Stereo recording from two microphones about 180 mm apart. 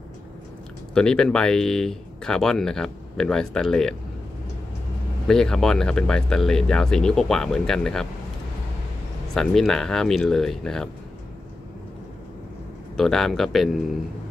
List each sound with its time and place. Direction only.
0.9 s speech: 5° left (ahead or behind)
5.3 s speech: 5° left (ahead or behind)
9.3 s speech: centre (ahead or behind)
12.9 s speech: centre (ahead or behind)